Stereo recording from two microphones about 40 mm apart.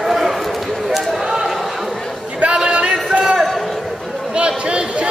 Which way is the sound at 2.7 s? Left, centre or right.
Right.